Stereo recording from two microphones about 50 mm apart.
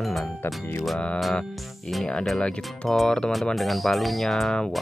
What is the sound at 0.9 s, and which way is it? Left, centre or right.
Music, left.